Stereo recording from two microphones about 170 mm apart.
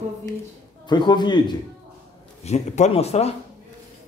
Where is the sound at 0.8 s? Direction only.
25° left (ahead or behind).